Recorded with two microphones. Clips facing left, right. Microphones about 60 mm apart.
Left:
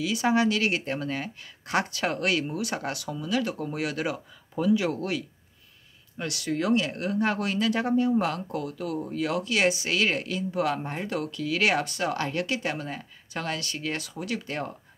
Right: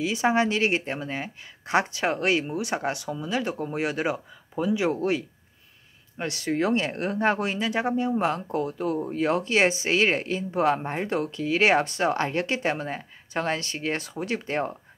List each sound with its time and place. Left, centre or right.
0.0 s speech: right